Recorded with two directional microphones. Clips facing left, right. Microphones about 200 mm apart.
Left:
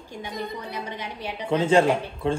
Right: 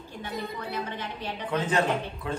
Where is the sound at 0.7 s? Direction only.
10° left (ahead or behind).